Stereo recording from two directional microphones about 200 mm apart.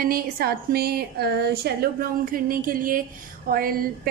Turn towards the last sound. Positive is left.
turn(degrees=-45)  # may be behind; listen again after turning